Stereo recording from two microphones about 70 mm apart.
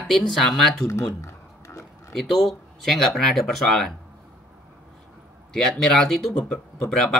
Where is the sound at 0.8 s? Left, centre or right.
Left.